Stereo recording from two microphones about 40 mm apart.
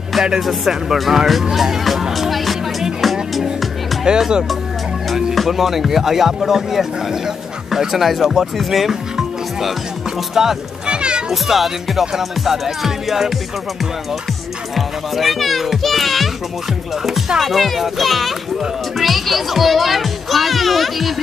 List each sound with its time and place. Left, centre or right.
0.4 s a child's voice: centre
1.5 s music: centre
4.1 s speech: right
5.3 s a child's voice: centre
9.1 s music: centre
10.3 s speech: centre
10.9 s music: right
11.4 s a child's voice: centre
14.8 s a child's voice: centre
17.4 s a child's voice: centre